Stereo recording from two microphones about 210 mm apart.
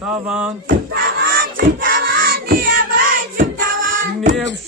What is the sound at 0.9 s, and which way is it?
Child singing, 45° right (ahead or behind).